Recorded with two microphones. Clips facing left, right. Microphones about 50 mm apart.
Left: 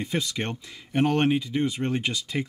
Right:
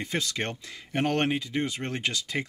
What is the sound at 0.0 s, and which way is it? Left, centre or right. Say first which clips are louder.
Speech: left 2 dB; centre.